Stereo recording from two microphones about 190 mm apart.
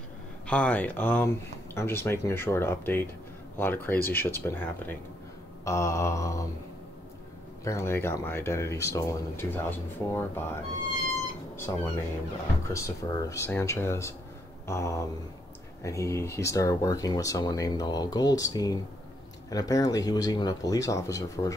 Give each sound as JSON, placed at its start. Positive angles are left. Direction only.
{"t": 0.5, "sound": "speech", "side_deg": 10}
{"t": 7.6, "sound": "speech", "side_deg": 15}